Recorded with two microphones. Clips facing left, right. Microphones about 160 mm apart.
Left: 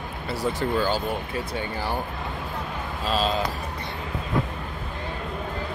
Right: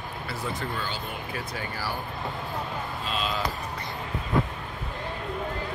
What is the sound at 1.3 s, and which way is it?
Speech, 25° left (ahead or behind).